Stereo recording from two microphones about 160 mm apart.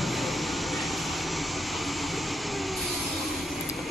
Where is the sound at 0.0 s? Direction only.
Centre (ahead or behind).